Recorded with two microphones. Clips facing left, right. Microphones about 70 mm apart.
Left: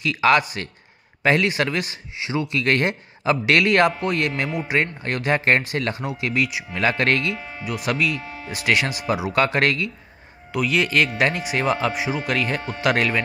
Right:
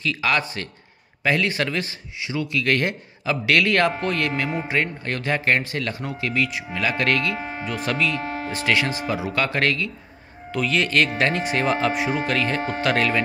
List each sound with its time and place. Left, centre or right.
0.0 s speech: centre
5.0 s speech: left
6.8 s speech: left
7.3 s a sound: right
7.6 s speech: centre
8.1 s speech: right
8.6 s speech: centre
10.5 s speech: centre
12.3 s speech: centre
12.5 s speech: right
12.8 s speech: centre